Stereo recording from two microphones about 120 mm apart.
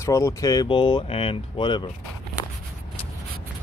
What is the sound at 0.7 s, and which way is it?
Speech, 45° left (ahead or behind).